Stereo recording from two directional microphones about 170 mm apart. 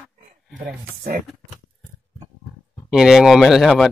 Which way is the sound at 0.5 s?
60° right (ahead or behind).